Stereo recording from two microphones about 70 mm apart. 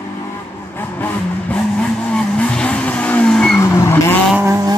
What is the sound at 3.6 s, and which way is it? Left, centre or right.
Vehicle, left.